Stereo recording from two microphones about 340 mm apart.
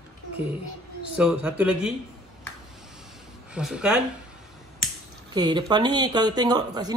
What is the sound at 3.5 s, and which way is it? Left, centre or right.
Speech, centre.